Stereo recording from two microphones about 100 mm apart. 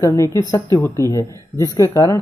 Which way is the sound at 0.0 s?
35° left (ahead or behind).